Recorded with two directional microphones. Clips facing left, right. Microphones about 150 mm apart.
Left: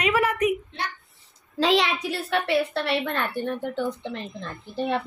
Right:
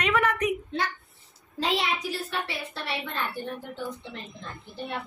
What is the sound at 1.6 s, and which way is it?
A woman's voice, 90° left.